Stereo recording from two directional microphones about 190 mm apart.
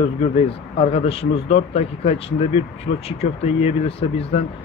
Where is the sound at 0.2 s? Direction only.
30° left (ahead or behind).